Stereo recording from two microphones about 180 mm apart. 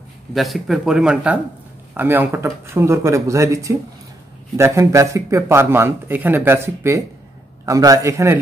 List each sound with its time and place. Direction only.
0.3 s speech: centre (ahead or behind); by 8.4 s 15° right (ahead or behind)